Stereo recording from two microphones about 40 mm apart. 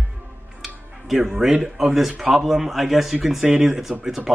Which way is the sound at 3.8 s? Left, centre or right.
Centre.